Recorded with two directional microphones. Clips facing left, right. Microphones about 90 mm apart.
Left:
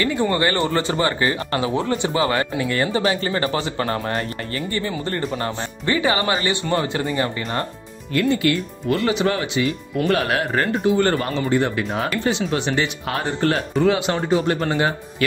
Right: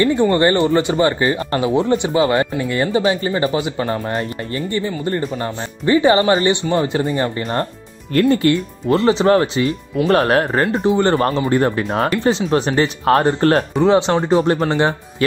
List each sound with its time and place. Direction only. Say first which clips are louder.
0.3 s speech: right 6 dB; 25° right (ahead or behind); by 4.3 s 5° right (ahead or behind)
4.6 s speech: right 4 dB; 20° right (ahead or behind)
8.1 s speech: right 5 dB; 45° right (ahead or behind)
8.8 s speech: right 6 dB; 30° right (ahead or behind)
13.8 s speech: right 5 dB; 30° right (ahead or behind)